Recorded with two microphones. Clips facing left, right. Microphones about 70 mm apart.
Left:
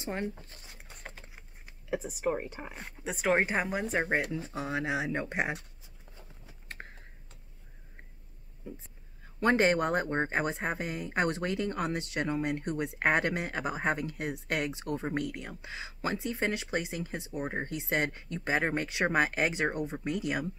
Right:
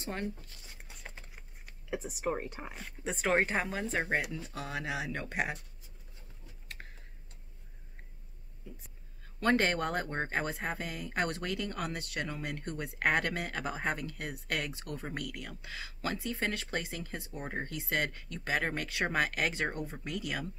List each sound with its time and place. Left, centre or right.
0.0 s speech: centre
0.4 s zipper: left
1.9 s speech: centre; by 5.6 s left
6.8 s typing: left
8.6 s speech: left